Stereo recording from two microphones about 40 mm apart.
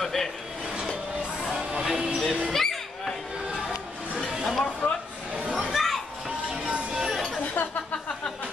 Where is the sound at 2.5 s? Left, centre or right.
Centre.